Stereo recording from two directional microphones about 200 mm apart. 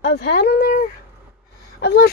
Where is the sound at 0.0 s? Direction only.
55° left (ahead or behind).